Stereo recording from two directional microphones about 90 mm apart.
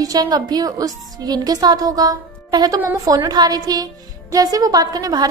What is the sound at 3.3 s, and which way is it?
Speech, 45° right (ahead or behind).